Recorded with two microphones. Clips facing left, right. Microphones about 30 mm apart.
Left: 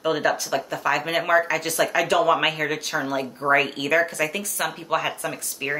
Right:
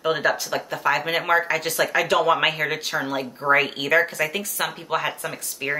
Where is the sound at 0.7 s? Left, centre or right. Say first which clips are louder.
Right 2 dB; centre.